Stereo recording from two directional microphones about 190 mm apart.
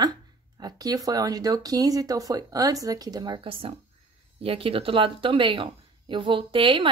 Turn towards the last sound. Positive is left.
turn(degrees=-25)  # may be behind; listen again after turning